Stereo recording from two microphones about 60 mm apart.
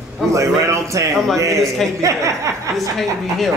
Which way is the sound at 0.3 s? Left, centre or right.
Right.